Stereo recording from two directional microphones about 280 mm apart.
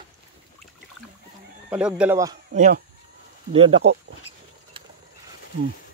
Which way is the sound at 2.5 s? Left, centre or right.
Right.